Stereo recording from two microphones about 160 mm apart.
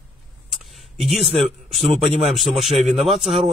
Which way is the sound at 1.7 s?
Centre (ahead or behind).